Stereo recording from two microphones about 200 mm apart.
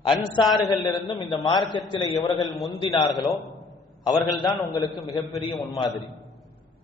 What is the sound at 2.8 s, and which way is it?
Speech, 20° left (ahead or behind).